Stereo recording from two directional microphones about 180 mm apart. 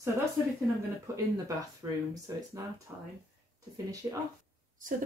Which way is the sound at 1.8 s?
15° right (ahead or behind).